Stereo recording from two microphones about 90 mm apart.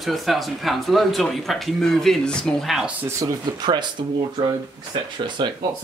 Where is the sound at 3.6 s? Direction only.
55° right (ahead or behind).